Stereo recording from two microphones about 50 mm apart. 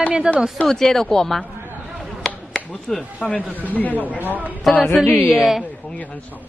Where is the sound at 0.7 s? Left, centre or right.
Centre.